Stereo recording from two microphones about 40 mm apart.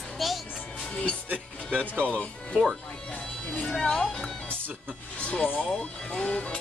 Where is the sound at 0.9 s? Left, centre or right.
Left.